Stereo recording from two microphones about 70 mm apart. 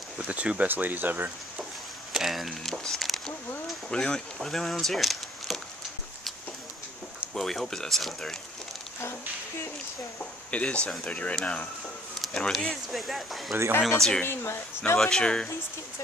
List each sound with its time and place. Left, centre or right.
0.2 s speech: centre
2.1 s speech: centre
7.3 s speech: centre
10.5 s speech: centre
14.2 s speech: left
15.0 s speech: centre